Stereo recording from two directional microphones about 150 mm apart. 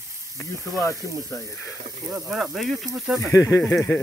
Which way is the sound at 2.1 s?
5° right (ahead or behind).